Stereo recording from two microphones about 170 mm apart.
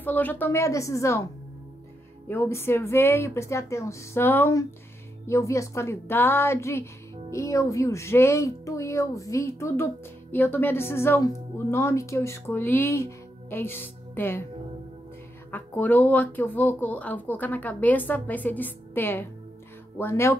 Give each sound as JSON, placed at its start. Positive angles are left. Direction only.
{"t": 0.0, "sound": "speech", "side_deg": 10}
{"t": 15.5, "sound": "speech", "side_deg": 10}